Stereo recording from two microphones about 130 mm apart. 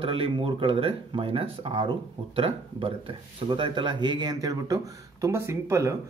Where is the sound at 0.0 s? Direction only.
45° right (ahead or behind).